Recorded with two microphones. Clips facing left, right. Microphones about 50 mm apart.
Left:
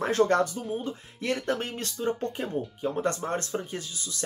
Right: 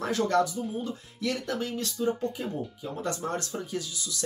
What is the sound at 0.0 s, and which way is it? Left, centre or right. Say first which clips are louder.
Speech: left 2 dB; left.